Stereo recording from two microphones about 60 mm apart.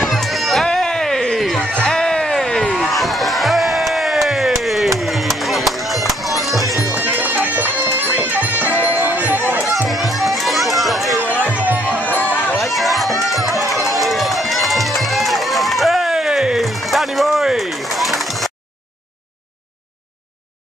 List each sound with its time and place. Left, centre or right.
0.0 s music: centre
0.7 s a sound: centre
1.6 s a sound: centre
4.6 s music: centre
6.9 s music: right
9.8 s music: centre
11.5 s music: right
11.8 s music: left
12.5 s run: centre